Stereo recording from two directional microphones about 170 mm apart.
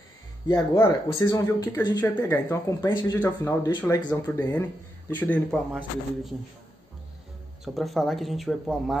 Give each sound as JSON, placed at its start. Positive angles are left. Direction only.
{"t": 0.5, "sound": "speech", "side_deg": 20}
{"t": 5.1, "sound": "speech", "side_deg": 10}
{"t": 5.7, "sound": "speech", "side_deg": -10}
{"t": 7.6, "sound": "speech", "side_deg": 0}